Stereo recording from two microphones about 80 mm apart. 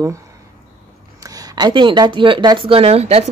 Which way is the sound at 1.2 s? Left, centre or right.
Right.